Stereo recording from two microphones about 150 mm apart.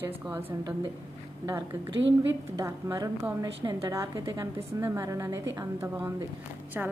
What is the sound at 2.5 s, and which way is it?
A woman's voice, 20° right (ahead or behind).